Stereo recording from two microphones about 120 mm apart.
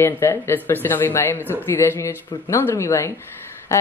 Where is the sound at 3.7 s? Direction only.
20° left (ahead or behind).